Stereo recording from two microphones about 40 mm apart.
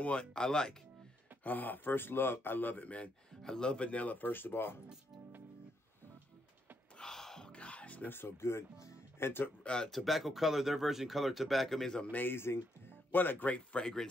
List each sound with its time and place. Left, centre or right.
0.2 s speech: centre
1.4 s speech: left
3.4 s speech: centre; by 4.7 s left
7.0 s gasp: centre
7.4 s music: left
8.1 s speech: left
9.2 s speech: left
9.6 s speech: left
9.8 s speech: centre
12.1 s speech: left
13.5 s speech: left